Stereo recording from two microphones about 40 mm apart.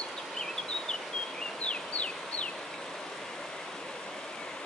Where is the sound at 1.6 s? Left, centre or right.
Left.